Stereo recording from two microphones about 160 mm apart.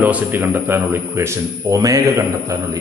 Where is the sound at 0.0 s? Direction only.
10° right (ahead or behind).